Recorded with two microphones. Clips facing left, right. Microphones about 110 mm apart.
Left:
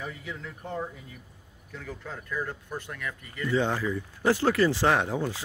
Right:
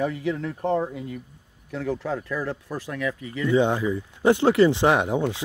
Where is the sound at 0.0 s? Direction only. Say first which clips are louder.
Right 12 dB; 70° right (ahead or behind).